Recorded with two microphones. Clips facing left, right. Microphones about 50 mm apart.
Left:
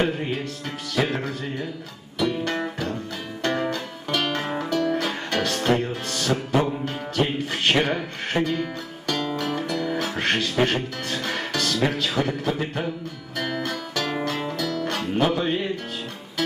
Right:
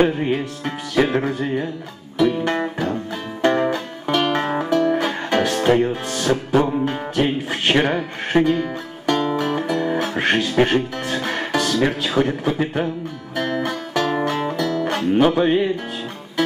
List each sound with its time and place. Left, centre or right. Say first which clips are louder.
0.0 s music: right 6 dB; centre
10.1 s speech: right 6 dB; centre
12.4 s music: right 5 dB; centre